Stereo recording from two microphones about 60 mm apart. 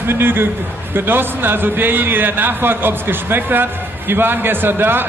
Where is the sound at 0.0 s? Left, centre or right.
Right.